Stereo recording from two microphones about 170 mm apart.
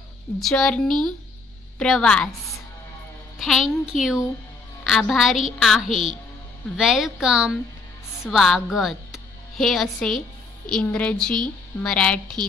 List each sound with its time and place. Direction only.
0.4 s a woman's voice: centre (ahead or behind)
3.3 s a woman's voice: centre (ahead or behind)